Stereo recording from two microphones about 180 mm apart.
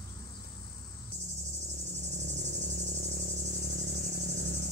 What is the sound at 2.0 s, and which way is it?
Cricket, 75° right (ahead or behind).